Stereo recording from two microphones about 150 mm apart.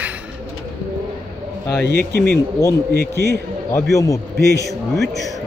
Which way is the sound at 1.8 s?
90° right.